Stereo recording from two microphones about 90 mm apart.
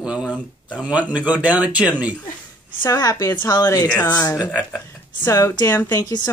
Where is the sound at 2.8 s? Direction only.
40° left (ahead or behind).